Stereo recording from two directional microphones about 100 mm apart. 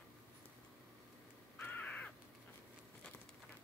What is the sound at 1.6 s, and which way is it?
Crow, 15° left (ahead or behind).